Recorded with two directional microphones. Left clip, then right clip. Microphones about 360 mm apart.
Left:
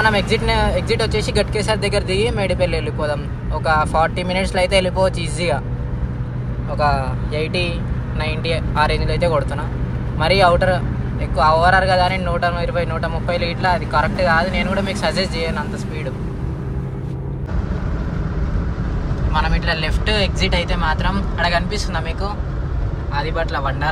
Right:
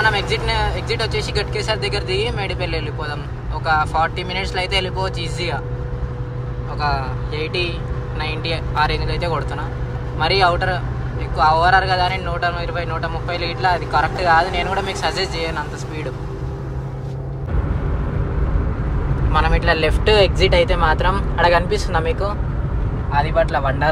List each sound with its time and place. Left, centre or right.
0.0 s speech: centre
6.8 s a man's voice: centre
19.3 s speech: centre